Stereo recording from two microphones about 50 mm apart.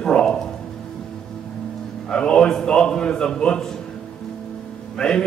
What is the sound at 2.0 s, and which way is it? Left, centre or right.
A man's voice, centre.